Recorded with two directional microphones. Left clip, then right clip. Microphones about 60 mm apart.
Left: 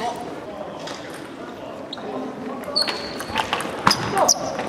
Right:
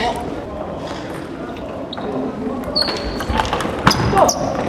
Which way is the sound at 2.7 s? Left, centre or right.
Centre.